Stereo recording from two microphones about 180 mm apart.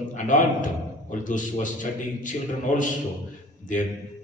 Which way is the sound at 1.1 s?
45° left (ahead or behind).